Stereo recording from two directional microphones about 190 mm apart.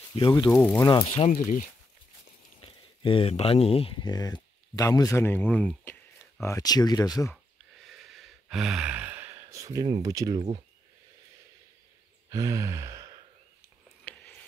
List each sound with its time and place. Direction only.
0.1 s speech: 25° left (ahead or behind)
0.5 s speech: 5° left (ahead or behind)
1.3 s speech: 45° left (ahead or behind)
2.6 s speech: 30° left (ahead or behind)
8.2 s sigh: 5° right (ahead or behind); by 9.9 s 20° right (ahead or behind)
10.0 s speech: 20° right (ahead or behind)
12.3 s sigh: 15° right (ahead or behind)
14.1 s a sound: 5° left (ahead or behind)